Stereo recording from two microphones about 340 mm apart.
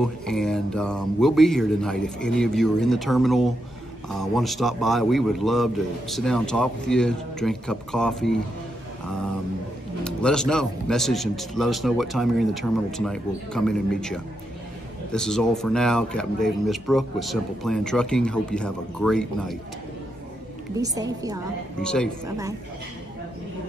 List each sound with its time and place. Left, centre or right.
0.0 s speech: centre
10.0 s speech: centre
20.7 s a woman's voice: centre
21.8 s speech: centre